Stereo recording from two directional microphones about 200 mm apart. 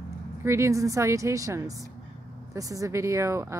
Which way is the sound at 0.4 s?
15° right (ahead or behind).